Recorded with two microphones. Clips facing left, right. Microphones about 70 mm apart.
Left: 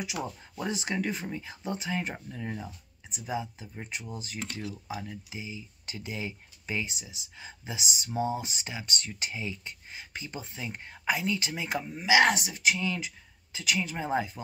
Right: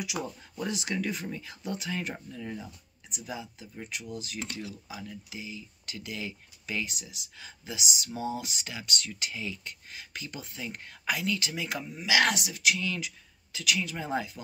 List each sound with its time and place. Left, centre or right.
0.2 s speech: left